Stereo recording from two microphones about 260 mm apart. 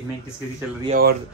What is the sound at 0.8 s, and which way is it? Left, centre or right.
Speech, right.